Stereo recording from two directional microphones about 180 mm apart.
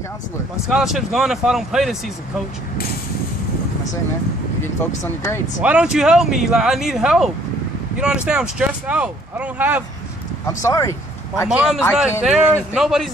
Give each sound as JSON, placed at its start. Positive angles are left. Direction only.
{"t": 0.7, "sound": "speech", "side_deg": 0}
{"t": 5.0, "sound": "speech", "side_deg": 15}
{"t": 5.6, "sound": "speech", "side_deg": -5}
{"t": 10.4, "sound": "speech", "side_deg": 15}
{"t": 11.4, "sound": "speech", "side_deg": -5}